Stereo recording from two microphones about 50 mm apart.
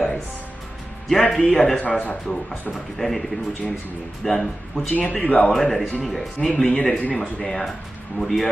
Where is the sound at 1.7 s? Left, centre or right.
Left.